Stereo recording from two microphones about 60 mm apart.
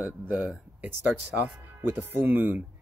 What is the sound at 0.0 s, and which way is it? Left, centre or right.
Mantra, right.